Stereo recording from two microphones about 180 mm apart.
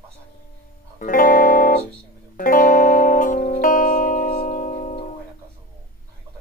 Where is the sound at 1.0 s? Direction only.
50° left (ahead or behind).